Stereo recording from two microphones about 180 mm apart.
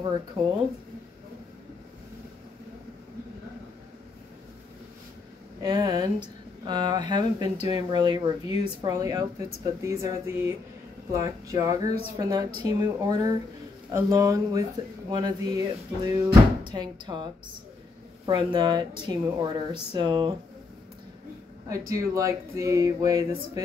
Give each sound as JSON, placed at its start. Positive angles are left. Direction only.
{"t": 0.4, "sound": "speech", "side_deg": -30}
{"t": 5.6, "sound": "speech", "side_deg": -20}
{"t": 21.6, "sound": "speech", "side_deg": -20}